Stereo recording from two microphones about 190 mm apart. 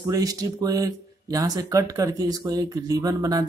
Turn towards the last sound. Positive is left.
turn(degrees=-20)  # may be behind; listen again after turning